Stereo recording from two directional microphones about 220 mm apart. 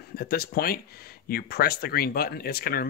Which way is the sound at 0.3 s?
45° left (ahead or behind).